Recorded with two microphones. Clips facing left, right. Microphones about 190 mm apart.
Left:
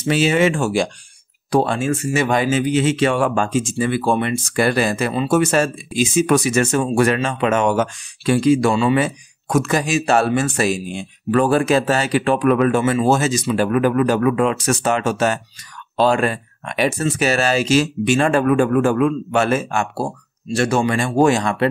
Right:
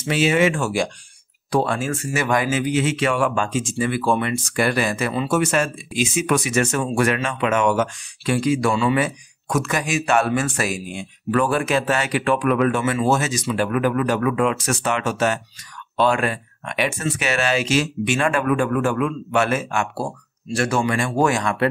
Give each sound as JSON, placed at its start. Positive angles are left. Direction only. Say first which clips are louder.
{"t": 0.1, "sound": "speech", "louder": "left 2 dB", "side_deg": 35}